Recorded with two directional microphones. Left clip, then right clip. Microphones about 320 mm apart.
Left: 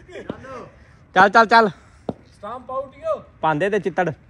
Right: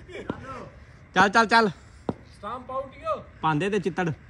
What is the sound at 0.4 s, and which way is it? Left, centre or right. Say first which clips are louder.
Chop: left 3 dB; right.